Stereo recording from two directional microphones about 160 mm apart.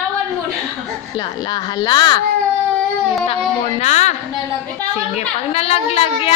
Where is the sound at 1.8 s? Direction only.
25° left (ahead or behind).